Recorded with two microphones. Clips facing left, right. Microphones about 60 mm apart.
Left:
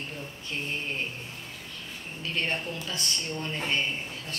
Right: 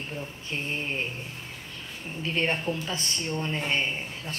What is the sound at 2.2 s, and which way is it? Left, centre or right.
Speech, right.